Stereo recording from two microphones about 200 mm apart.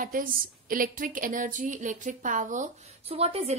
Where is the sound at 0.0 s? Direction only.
45° right (ahead or behind).